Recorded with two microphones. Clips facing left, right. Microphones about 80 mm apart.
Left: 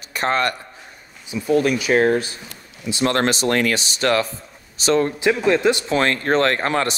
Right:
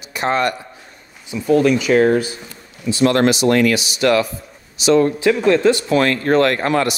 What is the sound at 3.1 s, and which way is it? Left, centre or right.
Speech, left.